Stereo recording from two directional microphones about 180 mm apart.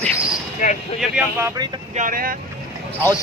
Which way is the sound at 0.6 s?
45° left (ahead or behind).